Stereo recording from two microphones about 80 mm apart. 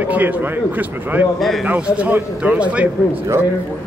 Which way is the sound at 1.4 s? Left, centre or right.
Centre.